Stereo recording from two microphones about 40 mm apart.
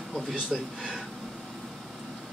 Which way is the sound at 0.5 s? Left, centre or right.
Centre.